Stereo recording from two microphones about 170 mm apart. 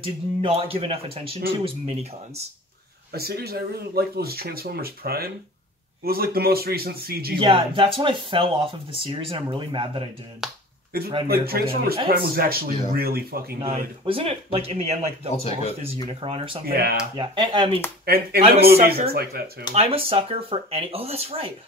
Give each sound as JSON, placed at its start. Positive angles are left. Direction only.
{"t": 0.0, "sound": "speech", "side_deg": -35}
{"t": 3.1, "sound": "speech", "side_deg": -65}
{"t": 7.3, "sound": "speech", "side_deg": -30}
{"t": 10.4, "sound": "speech", "side_deg": -5}
{"t": 11.2, "sound": "speech", "side_deg": -65}
{"t": 13.6, "sound": "speech", "side_deg": -30}
{"t": 15.3, "sound": "speech", "side_deg": 40}
{"t": 16.1, "sound": "speech", "side_deg": -35}
{"t": 16.6, "sound": "speech", "side_deg": -65}
{"t": 17.2, "sound": "speech", "side_deg": -25}
{"t": 18.0, "sound": "speech", "side_deg": -65}
{"t": 18.4, "sound": "speech", "side_deg": -35}
{"t": 19.0, "sound": "speech", "side_deg": -65}
{"t": 19.7, "sound": "speech", "side_deg": -35}